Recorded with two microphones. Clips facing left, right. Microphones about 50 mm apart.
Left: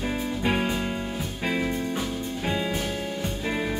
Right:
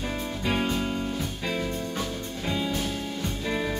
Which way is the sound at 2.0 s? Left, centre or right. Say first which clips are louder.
Left 2 dB; centre.